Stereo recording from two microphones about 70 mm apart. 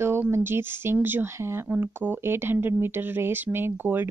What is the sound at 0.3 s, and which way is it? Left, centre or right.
Speech, right.